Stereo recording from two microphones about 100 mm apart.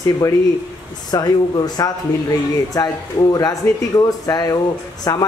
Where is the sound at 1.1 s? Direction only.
35° left (ahead or behind).